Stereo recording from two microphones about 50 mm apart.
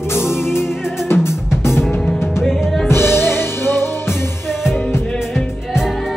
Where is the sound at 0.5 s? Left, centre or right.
Left.